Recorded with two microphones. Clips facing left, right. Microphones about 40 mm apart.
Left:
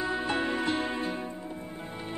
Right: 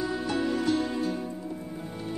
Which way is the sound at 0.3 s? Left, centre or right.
Left.